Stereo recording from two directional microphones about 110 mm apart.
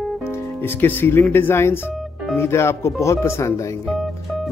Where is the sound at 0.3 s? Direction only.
20° left (ahead or behind).